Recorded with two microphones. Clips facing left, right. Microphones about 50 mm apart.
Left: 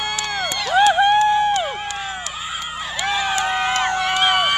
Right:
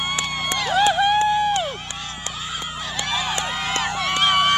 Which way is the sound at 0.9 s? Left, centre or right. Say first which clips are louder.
Left 3 dB; centre.